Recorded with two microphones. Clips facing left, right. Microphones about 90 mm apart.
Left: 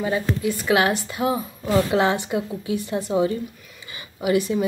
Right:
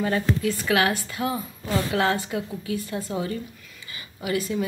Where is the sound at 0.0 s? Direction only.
15° left (ahead or behind).